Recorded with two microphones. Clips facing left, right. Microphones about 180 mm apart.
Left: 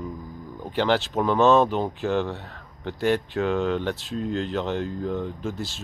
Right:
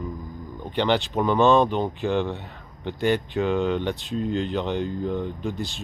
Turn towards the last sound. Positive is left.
turn(degrees=0)  # may be behind; listen again after turning